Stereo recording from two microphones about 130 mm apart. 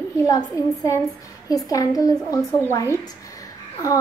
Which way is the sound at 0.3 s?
25° left (ahead or behind).